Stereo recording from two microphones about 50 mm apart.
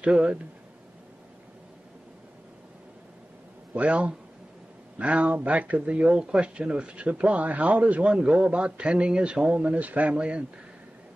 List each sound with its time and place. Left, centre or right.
0.0 s speech: right
3.7 s speech: right